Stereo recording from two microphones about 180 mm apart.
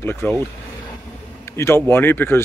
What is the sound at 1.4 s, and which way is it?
Speech, 15° left (ahead or behind).